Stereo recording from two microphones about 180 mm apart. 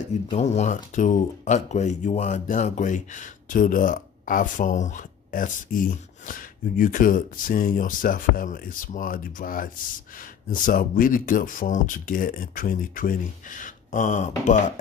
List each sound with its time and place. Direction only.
0.3 s speech: 40° left (ahead or behind)